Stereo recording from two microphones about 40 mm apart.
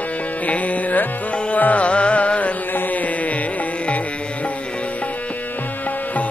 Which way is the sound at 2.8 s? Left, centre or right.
Left.